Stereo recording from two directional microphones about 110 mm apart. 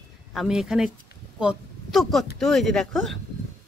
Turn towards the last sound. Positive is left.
turn(degrees=5)  # may be behind; listen again after turning